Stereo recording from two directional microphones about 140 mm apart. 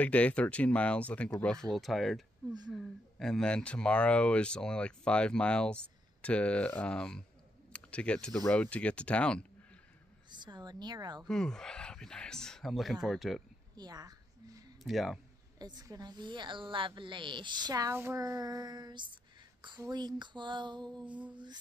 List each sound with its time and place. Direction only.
0.0 s speech: 10° left (ahead or behind)
10.4 s a woman's voice: 30° right (ahead or behind)
11.2 s speech: 5° left (ahead or behind)
13.7 s a sound: 30° right (ahead or behind)
14.8 s speech: centre (ahead or behind)
15.6 s a woman's voice: 30° right (ahead or behind)
21.0 s mantra: 10° right (ahead or behind)